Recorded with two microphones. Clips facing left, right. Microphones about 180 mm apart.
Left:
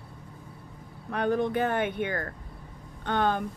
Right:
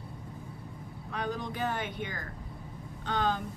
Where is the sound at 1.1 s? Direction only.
60° left (ahead or behind).